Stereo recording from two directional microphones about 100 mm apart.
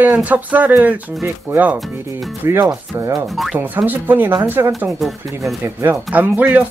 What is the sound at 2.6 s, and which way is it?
Rub, 40° right (ahead or behind).